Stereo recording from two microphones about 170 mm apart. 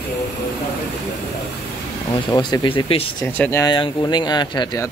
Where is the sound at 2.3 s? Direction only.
25° left (ahead or behind).